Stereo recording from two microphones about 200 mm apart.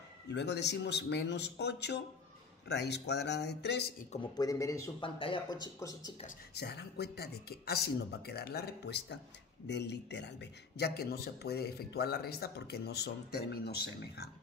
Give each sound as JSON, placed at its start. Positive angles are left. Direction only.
{"t": 0.3, "sound": "speech", "side_deg": 60}
{"t": 4.1, "sound": "a man's voice", "side_deg": 20}
{"t": 6.2, "sound": "a man's voice", "side_deg": 55}